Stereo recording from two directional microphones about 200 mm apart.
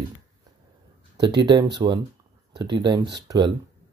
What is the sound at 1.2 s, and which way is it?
Speech, 20° right (ahead or behind).